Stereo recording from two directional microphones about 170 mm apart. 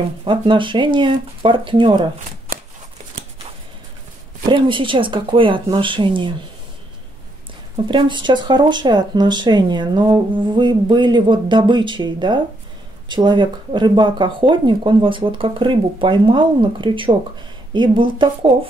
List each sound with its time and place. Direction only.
0.2 s speech: 30° right (ahead or behind)
4.5 s speech: 30° right (ahead or behind)
7.9 s speech: 30° right (ahead or behind)